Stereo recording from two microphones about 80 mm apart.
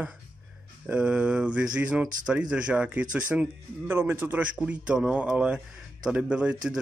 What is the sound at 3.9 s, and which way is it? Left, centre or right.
Speech, right.